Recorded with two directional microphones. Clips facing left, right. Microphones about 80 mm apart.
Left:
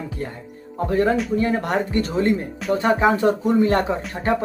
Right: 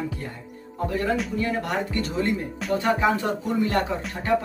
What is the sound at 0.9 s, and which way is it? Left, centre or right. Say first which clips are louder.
Speech: left 7 dB; left.